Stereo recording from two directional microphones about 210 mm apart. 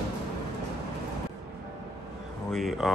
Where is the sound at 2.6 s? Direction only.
Centre (ahead or behind).